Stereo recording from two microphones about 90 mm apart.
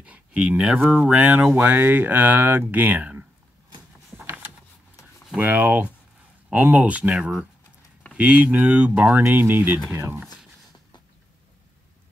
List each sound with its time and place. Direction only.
0.0 s speech: 15° right (ahead or behind)
4.2 s a sound: 20° right (ahead or behind)
5.4 s speech: 20° right (ahead or behind)